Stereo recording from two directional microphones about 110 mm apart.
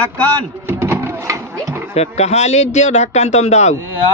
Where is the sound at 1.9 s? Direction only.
75° left (ahead or behind).